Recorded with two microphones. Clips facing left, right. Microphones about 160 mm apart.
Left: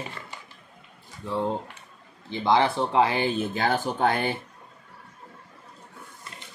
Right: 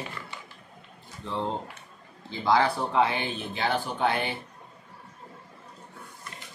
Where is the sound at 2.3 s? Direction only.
20° left (ahead or behind); by 4.3 s 40° left (ahead or behind).